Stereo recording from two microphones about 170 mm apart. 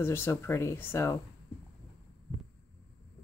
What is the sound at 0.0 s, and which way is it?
Speech, 15° left (ahead or behind).